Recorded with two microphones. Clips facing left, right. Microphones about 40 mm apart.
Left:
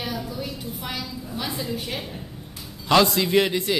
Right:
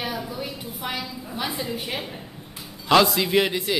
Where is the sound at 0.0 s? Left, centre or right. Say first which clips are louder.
Right 1 dB; centre.